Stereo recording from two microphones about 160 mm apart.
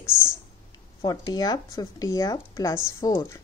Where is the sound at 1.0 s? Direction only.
25° left (ahead or behind).